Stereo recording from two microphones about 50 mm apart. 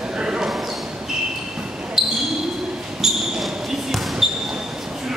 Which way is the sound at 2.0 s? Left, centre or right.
Centre.